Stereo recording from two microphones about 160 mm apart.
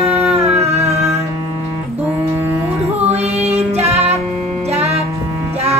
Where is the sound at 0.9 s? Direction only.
20° right (ahead or behind).